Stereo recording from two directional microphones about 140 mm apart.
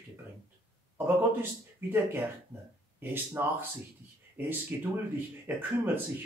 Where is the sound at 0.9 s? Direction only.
15° right (ahead or behind).